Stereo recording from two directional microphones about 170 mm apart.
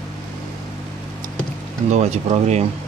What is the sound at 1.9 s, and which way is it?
Speech, 40° right (ahead or behind).